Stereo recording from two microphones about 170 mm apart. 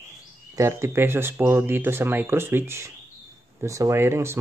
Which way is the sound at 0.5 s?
15° right (ahead or behind).